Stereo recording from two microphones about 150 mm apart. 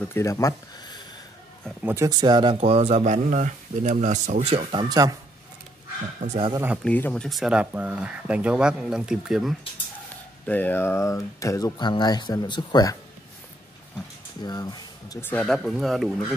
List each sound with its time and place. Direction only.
0.1 s speech: 20° left (ahead or behind)
1.8 s speech: 10° right (ahead or behind)
2.0 s speech: 30° right (ahead or behind)
4.8 s speech: 25° right (ahead or behind)
6.2 s speech: 45° right (ahead or behind)
6.8 s speech: 10° left (ahead or behind)
7.2 s speech: centre (ahead or behind)
10.4 s speech: 10° left (ahead or behind); by 12.9 s 30° left (ahead or behind)
14.4 s speech: 25° left (ahead or behind)
15.2 s speech: 5° left (ahead or behind)